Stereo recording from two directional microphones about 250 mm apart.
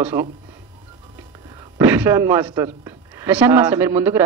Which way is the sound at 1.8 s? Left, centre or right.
Centre.